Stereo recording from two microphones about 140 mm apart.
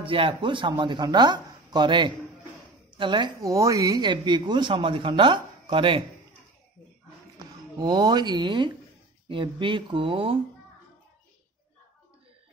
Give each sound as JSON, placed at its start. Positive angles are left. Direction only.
{"t": 0.0, "sound": "speech", "side_deg": -40}
{"t": 3.4, "sound": "speech", "side_deg": -25}
{"t": 7.8, "sound": "speech", "side_deg": -30}